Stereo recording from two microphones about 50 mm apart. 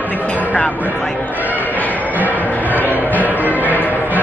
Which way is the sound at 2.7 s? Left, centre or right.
Right.